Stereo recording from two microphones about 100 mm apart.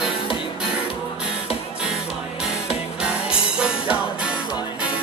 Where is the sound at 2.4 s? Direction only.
10° right (ahead or behind).